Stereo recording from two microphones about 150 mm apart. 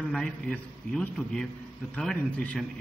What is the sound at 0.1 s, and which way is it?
A man's voice, 5° left (ahead or behind).